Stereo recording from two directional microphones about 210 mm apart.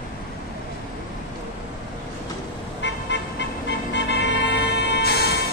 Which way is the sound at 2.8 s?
60° left (ahead or behind).